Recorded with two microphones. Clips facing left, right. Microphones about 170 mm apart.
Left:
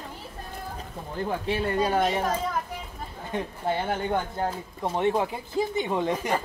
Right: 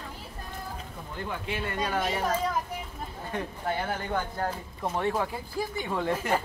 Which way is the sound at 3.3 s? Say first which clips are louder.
Left 4 dB; 25° left (ahead or behind).